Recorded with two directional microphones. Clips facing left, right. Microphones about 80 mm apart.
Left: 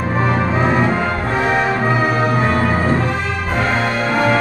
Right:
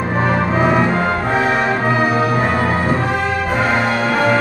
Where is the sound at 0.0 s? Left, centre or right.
Centre.